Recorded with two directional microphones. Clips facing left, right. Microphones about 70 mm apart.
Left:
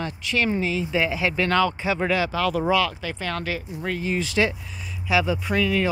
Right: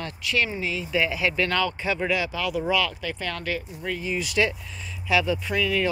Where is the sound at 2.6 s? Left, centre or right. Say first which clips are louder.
Left 3 dB; left.